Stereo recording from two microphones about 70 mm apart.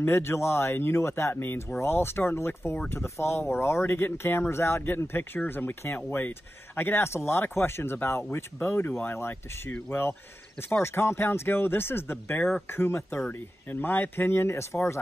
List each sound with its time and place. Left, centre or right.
0.0 s speech: left
10.7 s speech: left